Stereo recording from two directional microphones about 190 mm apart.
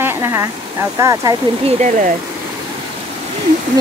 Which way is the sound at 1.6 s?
40° right (ahead or behind).